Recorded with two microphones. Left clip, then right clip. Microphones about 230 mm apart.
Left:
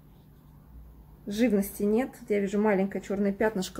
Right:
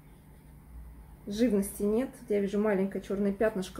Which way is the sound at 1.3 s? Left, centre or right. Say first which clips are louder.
Left 2 dB; left.